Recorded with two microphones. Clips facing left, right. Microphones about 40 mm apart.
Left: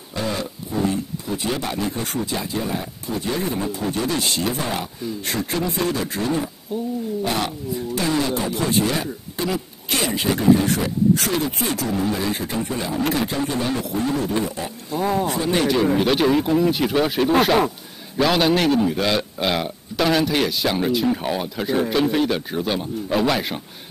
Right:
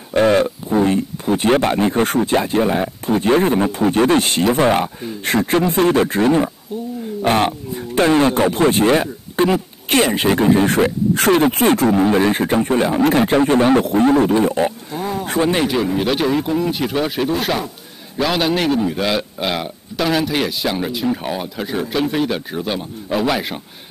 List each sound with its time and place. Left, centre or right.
0.1 s speech: right
15.0 s a man's voice: centre
15.2 s speech: right
15.6 s a man's voice: centre